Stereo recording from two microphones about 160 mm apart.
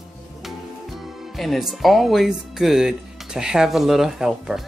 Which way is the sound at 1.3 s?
Centre (ahead or behind).